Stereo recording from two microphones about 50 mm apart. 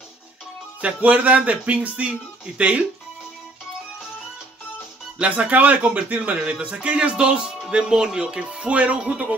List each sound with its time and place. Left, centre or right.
0.7 s speech: right
5.2 s speech: right